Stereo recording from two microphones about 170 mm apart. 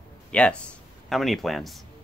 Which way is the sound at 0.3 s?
5° left (ahead or behind).